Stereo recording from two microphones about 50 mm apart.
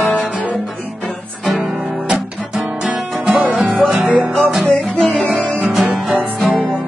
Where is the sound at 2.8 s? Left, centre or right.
Centre.